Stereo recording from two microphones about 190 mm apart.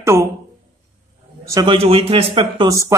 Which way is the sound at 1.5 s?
25° right (ahead or behind).